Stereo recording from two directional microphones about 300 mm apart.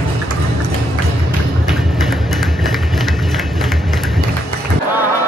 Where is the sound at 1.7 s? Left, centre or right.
Centre.